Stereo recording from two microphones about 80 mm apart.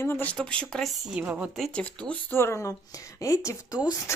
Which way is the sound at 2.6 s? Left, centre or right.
Left.